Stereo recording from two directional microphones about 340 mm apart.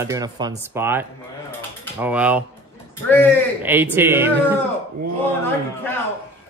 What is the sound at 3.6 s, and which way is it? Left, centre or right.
Speech, centre.